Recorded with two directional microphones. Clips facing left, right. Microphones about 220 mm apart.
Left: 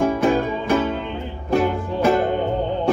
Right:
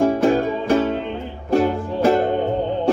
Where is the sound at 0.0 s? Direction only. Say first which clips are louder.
Right 2 dB; 35° right (ahead or behind).